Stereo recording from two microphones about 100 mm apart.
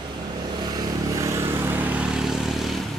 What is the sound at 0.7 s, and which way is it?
Vehicle, 40° right (ahead or behind).